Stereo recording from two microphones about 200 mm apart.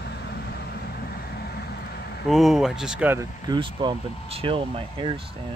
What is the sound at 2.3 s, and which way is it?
Speech, centre (ahead or behind).